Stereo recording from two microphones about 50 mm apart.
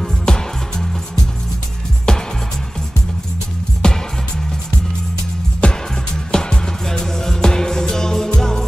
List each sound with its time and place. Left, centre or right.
0.0 s music: centre
3.8 s music: centre
5.6 s music: left